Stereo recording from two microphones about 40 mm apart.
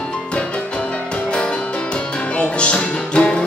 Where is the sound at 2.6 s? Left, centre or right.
Left.